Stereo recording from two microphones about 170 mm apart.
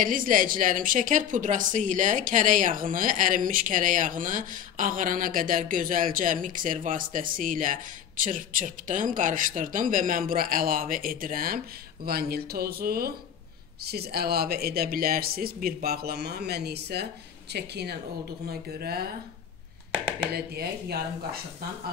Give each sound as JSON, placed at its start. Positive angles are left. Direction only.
{"t": 0.0, "sound": "speech", "side_deg": -55}
{"t": 20.3, "sound": "speech", "side_deg": -65}